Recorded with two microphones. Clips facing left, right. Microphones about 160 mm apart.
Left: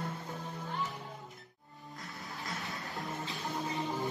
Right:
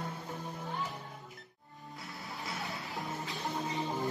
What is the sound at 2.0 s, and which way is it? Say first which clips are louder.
Music: even; centre (ahead or behind).